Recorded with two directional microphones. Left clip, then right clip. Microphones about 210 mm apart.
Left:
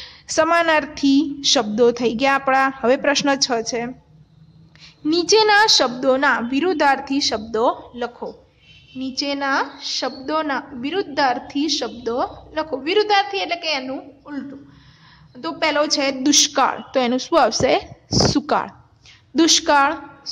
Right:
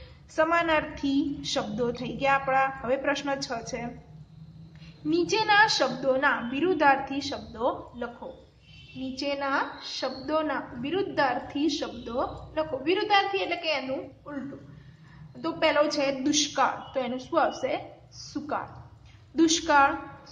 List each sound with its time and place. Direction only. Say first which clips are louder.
0.0 s a woman's voice: left 8 dB; 45° left (ahead or behind)
5.1 s a woman's voice: left 8 dB; 50° left (ahead or behind)
9.1 s a woman's voice: left 7 dB; 45° left (ahead or behind)
15.4 s a woman's voice: left 4 dB; 50° left (ahead or behind)